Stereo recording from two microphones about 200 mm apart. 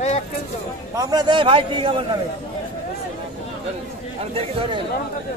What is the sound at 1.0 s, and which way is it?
Speech, 20° right (ahead or behind).